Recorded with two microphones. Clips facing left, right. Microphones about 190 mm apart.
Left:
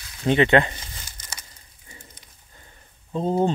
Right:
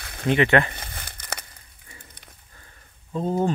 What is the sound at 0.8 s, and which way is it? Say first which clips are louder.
Crumpling: right 4 dB; 60° right (ahead or behind).